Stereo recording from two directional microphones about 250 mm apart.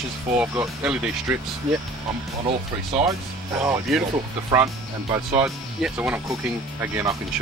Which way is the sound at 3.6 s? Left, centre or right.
Centre.